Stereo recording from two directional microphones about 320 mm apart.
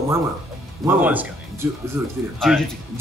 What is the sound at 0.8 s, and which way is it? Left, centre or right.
A man's voice, centre.